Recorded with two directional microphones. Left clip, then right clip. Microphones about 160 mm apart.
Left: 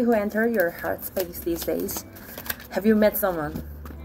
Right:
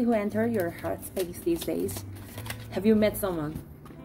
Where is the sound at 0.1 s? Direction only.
20° right (ahead or behind).